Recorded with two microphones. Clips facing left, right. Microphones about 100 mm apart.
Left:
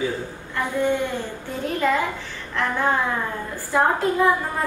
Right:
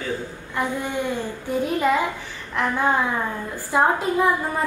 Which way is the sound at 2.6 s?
15° right (ahead or behind).